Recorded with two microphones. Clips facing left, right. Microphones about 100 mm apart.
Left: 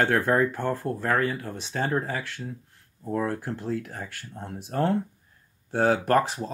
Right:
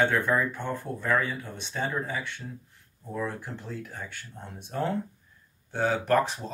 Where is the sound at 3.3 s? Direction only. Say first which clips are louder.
Left 7 dB; 90° left.